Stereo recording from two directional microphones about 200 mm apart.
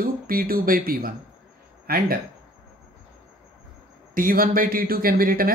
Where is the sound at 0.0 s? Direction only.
45° right (ahead or behind).